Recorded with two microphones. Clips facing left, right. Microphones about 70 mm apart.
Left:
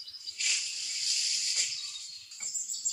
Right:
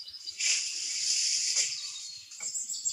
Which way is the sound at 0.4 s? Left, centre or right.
Centre.